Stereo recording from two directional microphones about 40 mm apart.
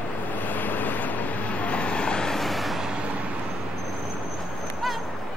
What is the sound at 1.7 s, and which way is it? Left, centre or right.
Vehicle, left.